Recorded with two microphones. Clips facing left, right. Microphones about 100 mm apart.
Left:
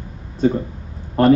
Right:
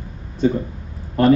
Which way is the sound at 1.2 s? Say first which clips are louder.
Left 1 dB; 40° left (ahead or behind).